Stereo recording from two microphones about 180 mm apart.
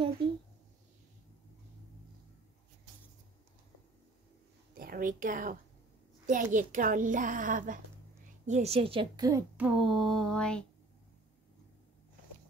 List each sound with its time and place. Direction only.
4.7 s a woman's voice: 55° right (ahead or behind)
8.5 s a woman's voice: 35° right (ahead or behind)
9.6 s a sound: 5° right (ahead or behind)